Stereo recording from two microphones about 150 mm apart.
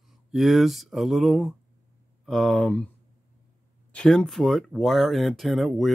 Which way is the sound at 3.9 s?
5° left (ahead or behind).